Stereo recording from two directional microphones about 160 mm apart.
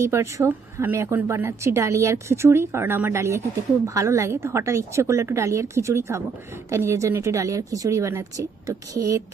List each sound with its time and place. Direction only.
0.0 s a woman's voice: 20° right (ahead or behind)